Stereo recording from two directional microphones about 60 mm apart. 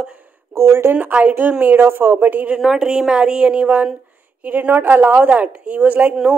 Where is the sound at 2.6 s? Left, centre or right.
Centre; by 5.3 s right.